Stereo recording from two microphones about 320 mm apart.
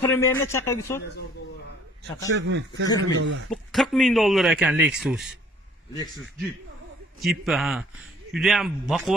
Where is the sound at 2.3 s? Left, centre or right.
Right.